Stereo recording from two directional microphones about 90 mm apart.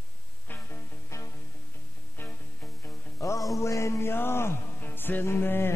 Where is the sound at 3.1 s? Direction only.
35° left (ahead or behind).